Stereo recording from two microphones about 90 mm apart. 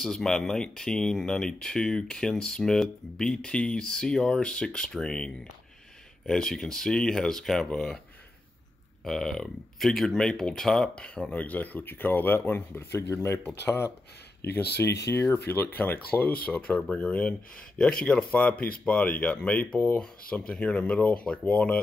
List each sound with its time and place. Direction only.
0.0 s speech: 5° left (ahead or behind)
9.0 s speech: 5° left (ahead or behind)